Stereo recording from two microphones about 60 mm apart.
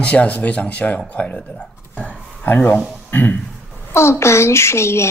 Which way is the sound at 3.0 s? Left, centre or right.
Left.